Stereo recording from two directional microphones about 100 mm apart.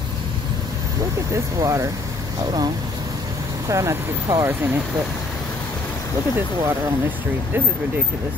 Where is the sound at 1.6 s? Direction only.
35° right (ahead or behind).